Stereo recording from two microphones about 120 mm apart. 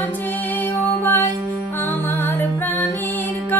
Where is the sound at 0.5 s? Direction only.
15° left (ahead or behind).